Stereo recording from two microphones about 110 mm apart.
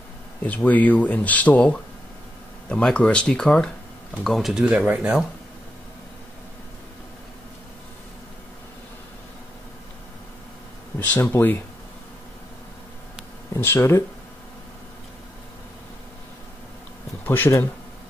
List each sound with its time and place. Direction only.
0.5 s speech: 15° left (ahead or behind); by 5.2 s 10° right (ahead or behind)
11.1 s speech: 20° left (ahead or behind)
13.5 s speech: 20° left (ahead or behind)
17.2 s speech: 20° left (ahead or behind)